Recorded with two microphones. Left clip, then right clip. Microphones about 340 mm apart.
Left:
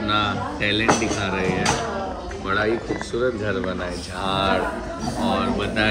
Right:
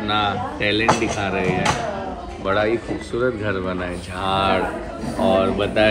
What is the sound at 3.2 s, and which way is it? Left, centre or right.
Speech, centre.